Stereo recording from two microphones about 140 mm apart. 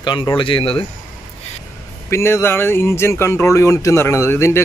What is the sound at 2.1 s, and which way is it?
Speech, 20° left (ahead or behind).